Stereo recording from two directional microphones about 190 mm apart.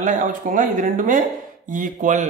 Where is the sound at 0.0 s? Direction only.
45° right (ahead or behind).